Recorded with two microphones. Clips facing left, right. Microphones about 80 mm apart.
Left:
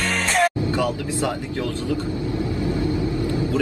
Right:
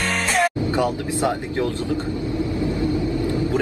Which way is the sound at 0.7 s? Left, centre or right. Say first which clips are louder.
Right 1 dB; right.